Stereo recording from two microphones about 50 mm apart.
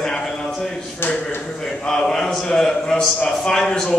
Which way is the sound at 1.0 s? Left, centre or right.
Left.